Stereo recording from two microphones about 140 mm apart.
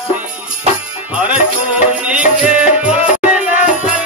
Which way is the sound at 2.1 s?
10° right (ahead or behind).